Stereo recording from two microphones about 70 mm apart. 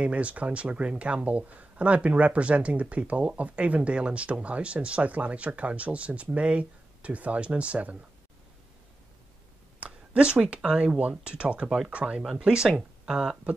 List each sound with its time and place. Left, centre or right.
0.0 s speech: centre
9.8 s speech: centre